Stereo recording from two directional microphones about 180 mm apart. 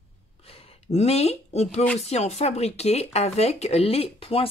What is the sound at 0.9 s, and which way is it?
Speech, 35° left (ahead or behind).